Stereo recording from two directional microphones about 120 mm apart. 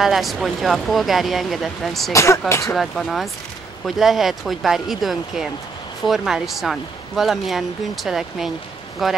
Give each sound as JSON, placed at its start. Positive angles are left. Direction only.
{"t": 0.0, "sound": "speech", "side_deg": 0}
{"t": 2.1, "sound": "speech", "side_deg": 25}
{"t": 2.6, "sound": "speech", "side_deg": 0}